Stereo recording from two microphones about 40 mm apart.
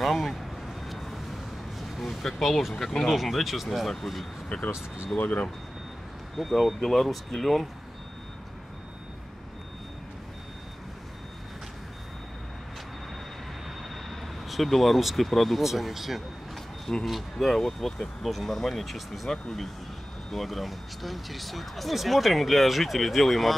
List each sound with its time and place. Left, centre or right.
0.0 s a sound: centre
2.9 s speech: centre
4.7 s speech: right
5.2 s speech: left
6.3 s speech: centre
13.7 s speech: centre